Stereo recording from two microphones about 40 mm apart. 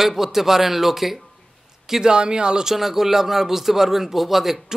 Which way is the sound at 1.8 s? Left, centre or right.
Centre.